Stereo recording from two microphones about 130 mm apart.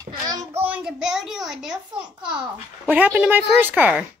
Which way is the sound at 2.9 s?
10° right (ahead or behind).